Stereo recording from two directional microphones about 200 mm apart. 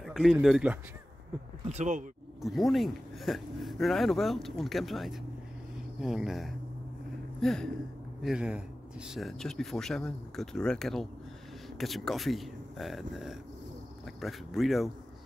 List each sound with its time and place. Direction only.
0.0 s speech: centre (ahead or behind)
1.6 s speech: 35° right (ahead or behind)
2.4 s speech: centre (ahead or behind)
7.3 s a sound: 5° left (ahead or behind)
8.2 s speech: 5° right (ahead or behind)